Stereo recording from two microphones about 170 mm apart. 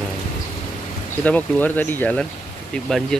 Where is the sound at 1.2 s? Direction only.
10° left (ahead or behind).